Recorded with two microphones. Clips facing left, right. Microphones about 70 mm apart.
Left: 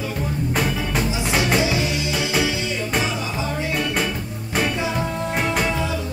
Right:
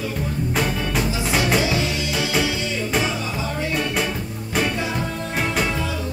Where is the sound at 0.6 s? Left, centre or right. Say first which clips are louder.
Even; centre.